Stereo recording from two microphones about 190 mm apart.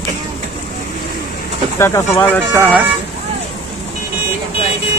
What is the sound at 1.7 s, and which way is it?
Speech, 10° left (ahead or behind).